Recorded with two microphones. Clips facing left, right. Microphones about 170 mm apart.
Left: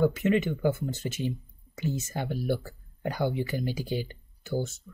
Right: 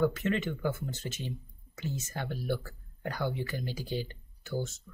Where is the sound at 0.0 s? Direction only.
15° left (ahead or behind).